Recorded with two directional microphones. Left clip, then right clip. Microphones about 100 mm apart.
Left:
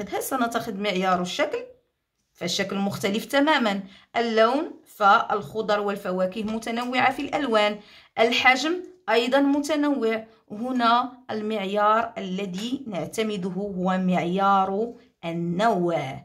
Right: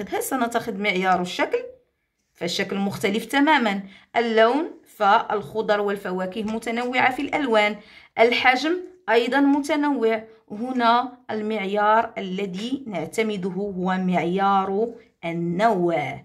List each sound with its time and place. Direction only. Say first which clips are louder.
0.1 s speech: right 2 dB; 30° left (ahead or behind)